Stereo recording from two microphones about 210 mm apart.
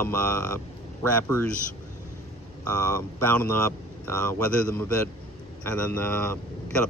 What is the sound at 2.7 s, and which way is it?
Speech, 10° left (ahead or behind).